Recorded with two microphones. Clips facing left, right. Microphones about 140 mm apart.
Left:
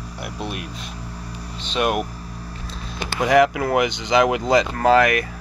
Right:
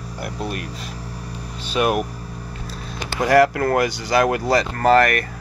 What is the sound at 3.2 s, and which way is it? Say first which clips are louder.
Speech: right 1 dB; 15° left (ahead or behind).